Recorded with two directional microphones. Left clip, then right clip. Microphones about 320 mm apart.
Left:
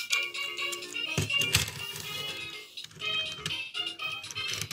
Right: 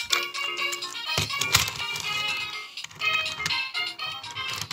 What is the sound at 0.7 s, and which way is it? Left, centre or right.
Music, centre.